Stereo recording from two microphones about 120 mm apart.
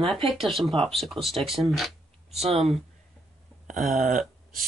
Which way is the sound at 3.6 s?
90° right.